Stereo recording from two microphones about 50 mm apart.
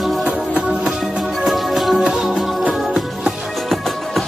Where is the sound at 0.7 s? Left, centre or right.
Right.